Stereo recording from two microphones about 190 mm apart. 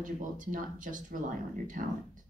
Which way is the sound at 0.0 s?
45° right (ahead or behind).